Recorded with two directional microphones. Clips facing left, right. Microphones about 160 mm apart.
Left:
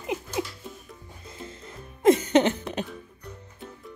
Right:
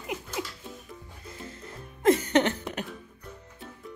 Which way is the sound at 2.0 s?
20° left (ahead or behind).